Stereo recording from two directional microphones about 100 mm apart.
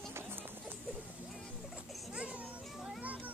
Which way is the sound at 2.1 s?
10° right (ahead or behind).